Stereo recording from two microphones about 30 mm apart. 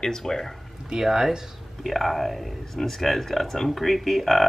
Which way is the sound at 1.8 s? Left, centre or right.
Centre.